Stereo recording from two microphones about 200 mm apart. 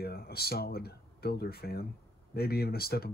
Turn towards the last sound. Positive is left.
turn(degrees=50)  # may be behind; listen again after turning